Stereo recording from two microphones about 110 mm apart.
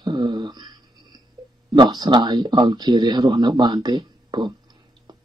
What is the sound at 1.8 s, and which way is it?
Speech, 40° right (ahead or behind).